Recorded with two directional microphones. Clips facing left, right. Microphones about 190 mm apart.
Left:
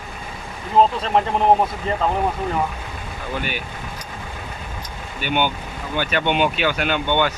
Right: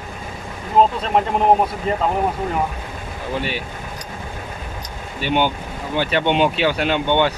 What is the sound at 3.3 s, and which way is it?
Speech, 30° right (ahead or behind).